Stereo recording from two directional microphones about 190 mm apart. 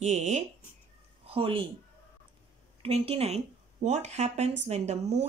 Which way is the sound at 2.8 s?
30° right (ahead or behind).